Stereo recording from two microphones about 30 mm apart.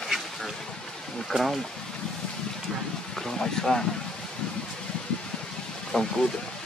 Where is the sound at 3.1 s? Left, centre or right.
Centre.